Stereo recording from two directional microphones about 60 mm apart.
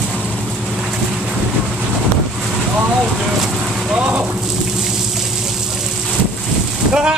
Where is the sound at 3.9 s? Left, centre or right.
Right.